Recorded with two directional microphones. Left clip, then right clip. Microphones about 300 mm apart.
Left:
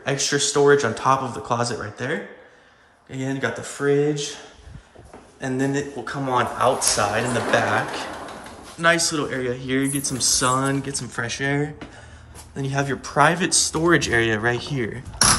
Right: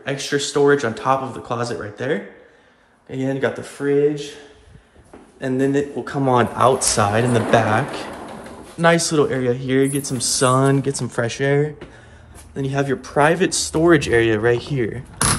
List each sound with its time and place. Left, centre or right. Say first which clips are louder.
0.0 s speech: even; centre
5.4 s speech: right 5 dB; centre